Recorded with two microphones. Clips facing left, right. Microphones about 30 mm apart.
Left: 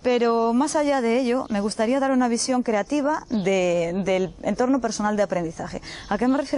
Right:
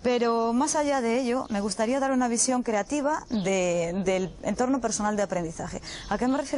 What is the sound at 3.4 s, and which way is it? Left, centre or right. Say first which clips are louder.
Speech: left 4 dB; centre.